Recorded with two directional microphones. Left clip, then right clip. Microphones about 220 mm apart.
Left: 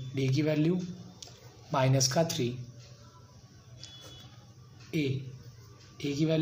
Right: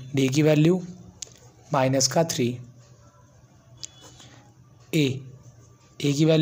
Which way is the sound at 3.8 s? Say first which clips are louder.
Right 5 dB; 50° right (ahead or behind).